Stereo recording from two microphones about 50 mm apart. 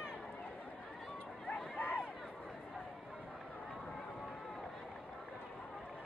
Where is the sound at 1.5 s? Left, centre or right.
Left.